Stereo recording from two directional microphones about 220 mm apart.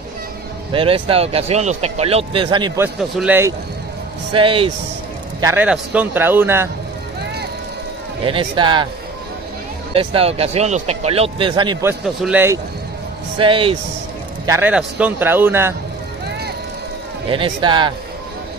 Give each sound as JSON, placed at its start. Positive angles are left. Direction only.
{"t": 0.7, "sound": "speech", "side_deg": -25}
{"t": 3.0, "sound": "a man's voice", "side_deg": -5}
{"t": 4.3, "sound": "speech", "side_deg": -25}
{"t": 5.4, "sound": "a man's voice", "side_deg": -10}
{"t": 8.2, "sound": "speech", "side_deg": -25}
{"t": 9.9, "sound": "a man's voice", "side_deg": -25}
{"t": 13.4, "sound": "speech", "side_deg": -25}
{"t": 14.4, "sound": "a man's voice", "side_deg": -10}
{"t": 17.3, "sound": "speech", "side_deg": -20}